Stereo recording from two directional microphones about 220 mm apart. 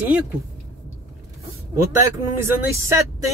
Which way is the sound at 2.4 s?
15° right (ahead or behind).